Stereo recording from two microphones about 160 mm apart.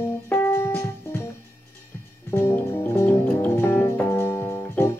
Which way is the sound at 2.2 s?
15° left (ahead or behind).